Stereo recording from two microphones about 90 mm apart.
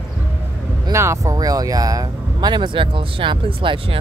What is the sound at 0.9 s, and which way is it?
Speech, 35° right (ahead or behind).